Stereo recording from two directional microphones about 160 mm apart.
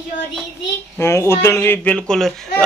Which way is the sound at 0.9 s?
15° left (ahead or behind).